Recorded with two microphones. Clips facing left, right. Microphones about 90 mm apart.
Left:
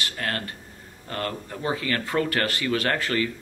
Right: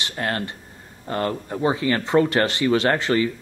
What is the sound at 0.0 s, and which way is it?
Speech, 25° right (ahead or behind).